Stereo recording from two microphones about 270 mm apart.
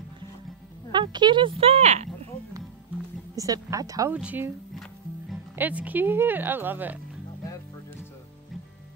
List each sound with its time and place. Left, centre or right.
0.9 s speech: centre
3.3 s speech: centre